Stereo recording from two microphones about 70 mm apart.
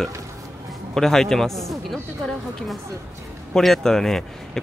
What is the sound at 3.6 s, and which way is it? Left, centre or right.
Speech, centre.